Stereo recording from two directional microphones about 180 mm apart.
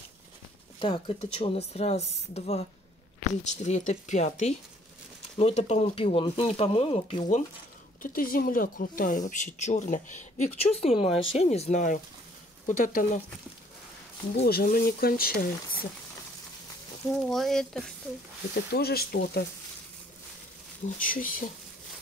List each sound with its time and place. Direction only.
0.7 s a woman's voice: 30° left (ahead or behind)
8.0 s a woman's voice: 50° left (ahead or behind)
14.4 s speech: 55° left (ahead or behind)
17.1 s speech: centre (ahead or behind)
18.5 s speech: 60° left (ahead or behind)
21.0 s speech: 50° left (ahead or behind)